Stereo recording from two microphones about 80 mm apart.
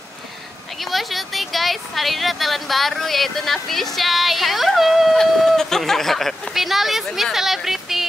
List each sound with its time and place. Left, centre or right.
0.7 s speech: centre